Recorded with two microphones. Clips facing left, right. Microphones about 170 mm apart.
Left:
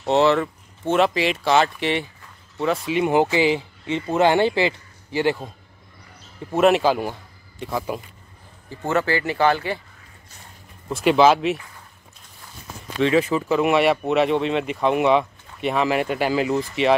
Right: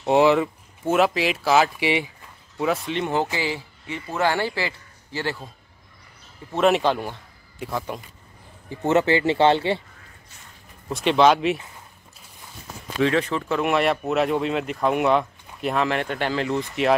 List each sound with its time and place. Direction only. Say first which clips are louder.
0.0 s speech: right 1 dB; 10° right (ahead or behind); by 5.5 s 15° left (ahead or behind)
6.5 s speech: left 2 dB; centre (ahead or behind)
8.6 s speech: right 3 dB; 20° right (ahead or behind)
10.9 s speech: left 2 dB; centre (ahead or behind)
11.5 s speech: even; 20° right (ahead or behind)
13.0 s speech: left 3 dB; 5° left (ahead or behind)